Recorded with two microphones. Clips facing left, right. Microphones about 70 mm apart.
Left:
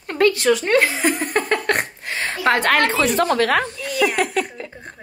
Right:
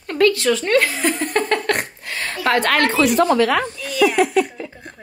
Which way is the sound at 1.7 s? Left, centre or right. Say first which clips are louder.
Even; left.